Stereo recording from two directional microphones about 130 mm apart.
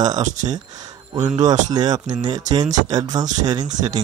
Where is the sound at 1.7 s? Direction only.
30° right (ahead or behind).